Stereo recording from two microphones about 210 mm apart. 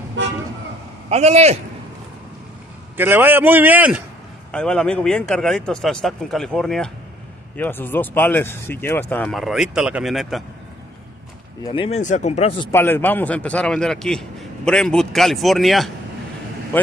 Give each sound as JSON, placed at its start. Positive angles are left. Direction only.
{"t": 1.1, "sound": "a man's voice", "side_deg": -30}
{"t": 3.0, "sound": "a man's voice", "side_deg": -10}
{"t": 4.5, "sound": "a man's voice", "side_deg": 5}
{"t": 11.6, "sound": "speech", "side_deg": 25}
{"t": 12.7, "sound": "a man's voice", "side_deg": 10}
{"t": 16.7, "sound": "vehicle", "side_deg": 10}